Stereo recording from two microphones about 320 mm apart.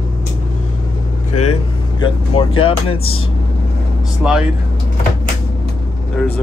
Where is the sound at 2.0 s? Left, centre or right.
Centre.